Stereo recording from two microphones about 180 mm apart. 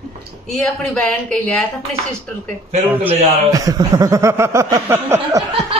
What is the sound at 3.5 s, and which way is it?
Speech, 20° right (ahead or behind).